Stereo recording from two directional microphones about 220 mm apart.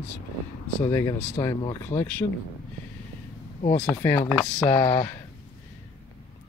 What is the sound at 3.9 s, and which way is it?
Speech, 10° left (ahead or behind).